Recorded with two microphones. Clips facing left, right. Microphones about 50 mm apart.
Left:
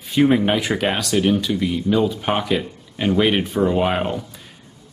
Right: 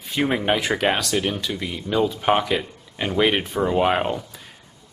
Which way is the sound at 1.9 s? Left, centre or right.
Centre.